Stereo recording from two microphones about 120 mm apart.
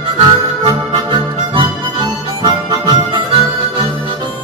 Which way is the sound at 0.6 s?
45° right (ahead or behind).